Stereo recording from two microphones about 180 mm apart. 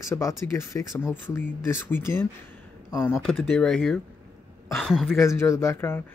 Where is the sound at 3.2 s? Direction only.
Centre (ahead or behind).